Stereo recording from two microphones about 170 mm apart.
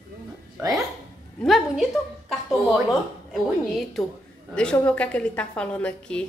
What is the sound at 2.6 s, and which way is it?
Speech, centre (ahead or behind).